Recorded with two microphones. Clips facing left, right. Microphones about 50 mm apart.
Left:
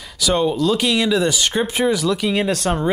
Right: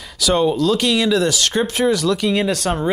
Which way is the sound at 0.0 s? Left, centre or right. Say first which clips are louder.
Right 2 dB; centre.